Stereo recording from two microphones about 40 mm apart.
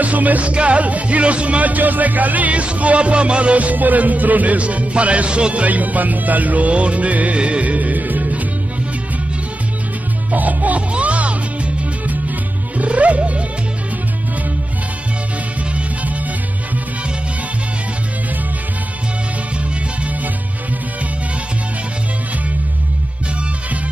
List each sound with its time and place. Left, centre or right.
0.0 s music: right
10.3 s music: right
12.7 s music: right